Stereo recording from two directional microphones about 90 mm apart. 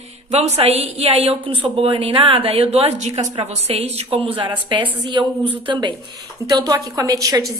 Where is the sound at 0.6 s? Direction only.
90° right.